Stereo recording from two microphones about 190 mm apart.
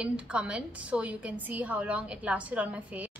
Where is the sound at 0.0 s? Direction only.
5° right (ahead or behind).